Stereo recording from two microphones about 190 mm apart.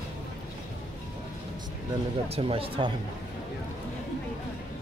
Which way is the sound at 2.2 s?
30° right (ahead or behind).